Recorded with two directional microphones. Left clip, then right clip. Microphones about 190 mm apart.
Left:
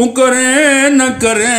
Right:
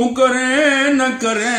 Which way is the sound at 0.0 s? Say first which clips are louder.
Left 4 dB; 45° left (ahead or behind).